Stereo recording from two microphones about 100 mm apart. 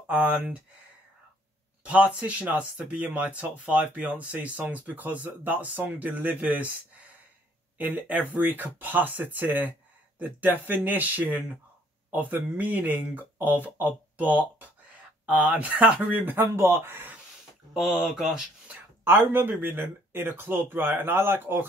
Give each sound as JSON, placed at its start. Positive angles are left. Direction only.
{"t": 0.1, "sound": "speech", "side_deg": -15}
{"t": 1.9, "sound": "speech", "side_deg": -10}
{"t": 7.7, "sound": "speech", "side_deg": -15}
{"t": 17.7, "sound": "speech", "side_deg": 0}
{"t": 18.7, "sound": "speech", "side_deg": -20}